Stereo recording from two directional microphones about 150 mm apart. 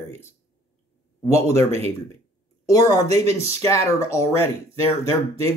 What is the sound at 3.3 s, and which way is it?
Speech, 20° left (ahead or behind).